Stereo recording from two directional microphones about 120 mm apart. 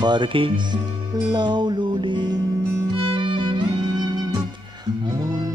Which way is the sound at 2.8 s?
45° right (ahead or behind).